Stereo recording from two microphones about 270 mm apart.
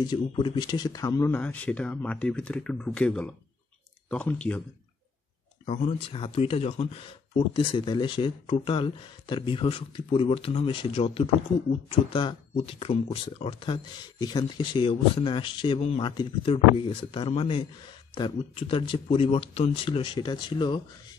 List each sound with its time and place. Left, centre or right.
0.0 s speech: centre
5.7 s speech: left